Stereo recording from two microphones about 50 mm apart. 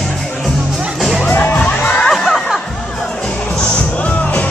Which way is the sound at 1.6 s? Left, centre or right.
Left.